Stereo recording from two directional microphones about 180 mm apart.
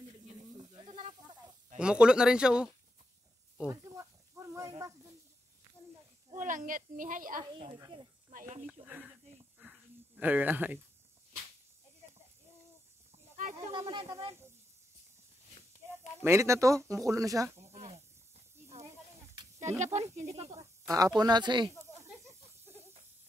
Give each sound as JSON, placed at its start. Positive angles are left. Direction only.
{"t": 0.7, "sound": "snake", "side_deg": -40}
{"t": 1.8, "sound": "speech", "side_deg": -5}
{"t": 3.6, "sound": "snake", "side_deg": -20}
{"t": 6.3, "sound": "speech", "side_deg": -45}
{"t": 7.4, "sound": "speech", "side_deg": -25}
{"t": 8.8, "sound": "speech", "side_deg": -5}
{"t": 9.6, "sound": "a sound", "side_deg": -5}
{"t": 13.7, "sound": "speech", "side_deg": -20}
{"t": 16.2, "sound": "speech", "side_deg": -15}
{"t": 17.6, "sound": "snake", "side_deg": -35}
{"t": 19.8, "sound": "speech", "side_deg": -40}
{"t": 20.8, "sound": "speech", "side_deg": -20}
{"t": 21.8, "sound": "snake", "side_deg": -15}